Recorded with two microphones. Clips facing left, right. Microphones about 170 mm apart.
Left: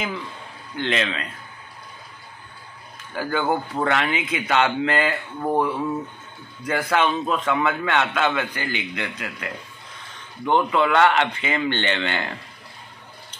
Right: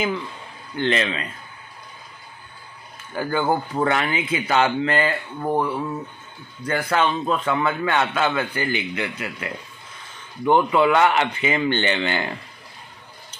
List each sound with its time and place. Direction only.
0.7 s a man's voice: centre (ahead or behind)
3.2 s a man's voice: centre (ahead or behind)